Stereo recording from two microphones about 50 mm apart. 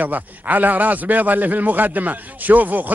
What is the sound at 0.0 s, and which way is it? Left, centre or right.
A man's voice, right.